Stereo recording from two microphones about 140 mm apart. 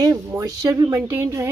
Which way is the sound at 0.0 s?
25° right (ahead or behind).